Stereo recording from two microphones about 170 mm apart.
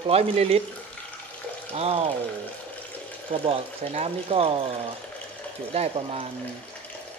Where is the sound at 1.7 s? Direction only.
35° right (ahead or behind).